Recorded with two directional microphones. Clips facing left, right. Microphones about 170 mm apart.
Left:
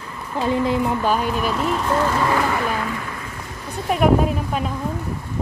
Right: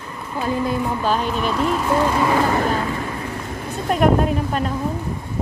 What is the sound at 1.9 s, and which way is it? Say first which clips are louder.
Speech: right 1 dB; 10° right (ahead or behind).